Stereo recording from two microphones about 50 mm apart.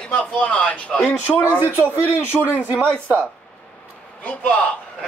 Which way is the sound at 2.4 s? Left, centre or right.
Right.